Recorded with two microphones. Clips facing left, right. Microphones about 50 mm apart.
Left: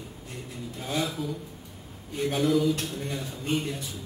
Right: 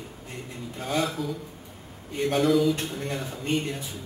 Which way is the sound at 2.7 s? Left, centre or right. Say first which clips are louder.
Right 1 dB; centre.